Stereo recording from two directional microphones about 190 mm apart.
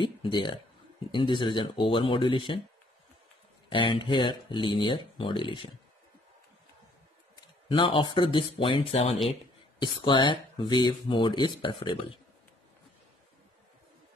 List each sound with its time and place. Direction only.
0.0 s speech: 25° left (ahead or behind)
3.6 s speech: 25° left (ahead or behind)
7.3 s speech: 25° left (ahead or behind)